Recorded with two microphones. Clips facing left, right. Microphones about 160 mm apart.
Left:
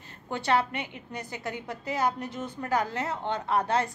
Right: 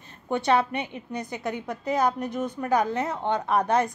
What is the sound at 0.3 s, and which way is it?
A woman's voice, 20° right (ahead or behind).